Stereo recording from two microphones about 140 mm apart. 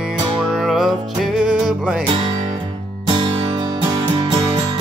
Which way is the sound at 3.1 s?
35° right (ahead or behind).